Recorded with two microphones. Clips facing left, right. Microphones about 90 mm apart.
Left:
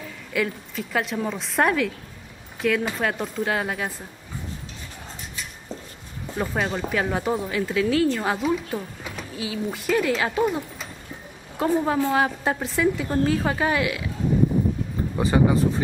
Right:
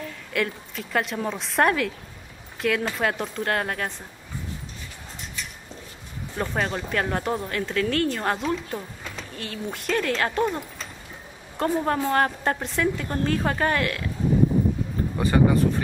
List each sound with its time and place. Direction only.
0.3 s speech: centre (ahead or behind)
6.3 s a woman's voice: 5° left (ahead or behind)
15.2 s speech: 20° left (ahead or behind)